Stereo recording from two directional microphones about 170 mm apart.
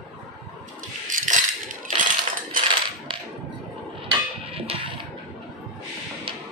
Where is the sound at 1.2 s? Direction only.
50° right (ahead or behind).